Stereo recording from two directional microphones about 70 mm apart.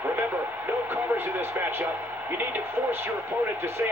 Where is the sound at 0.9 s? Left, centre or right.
Right.